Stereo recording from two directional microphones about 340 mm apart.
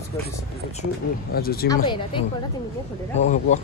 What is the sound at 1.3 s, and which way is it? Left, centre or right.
Speech, left.